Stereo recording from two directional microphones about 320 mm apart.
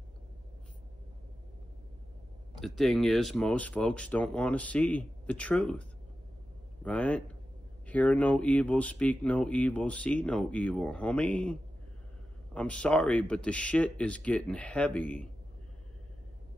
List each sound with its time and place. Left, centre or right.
2.6 s a man's voice: centre
12.5 s speech: centre